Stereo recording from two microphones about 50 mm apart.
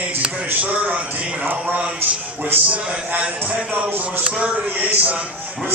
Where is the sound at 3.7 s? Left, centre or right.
Right.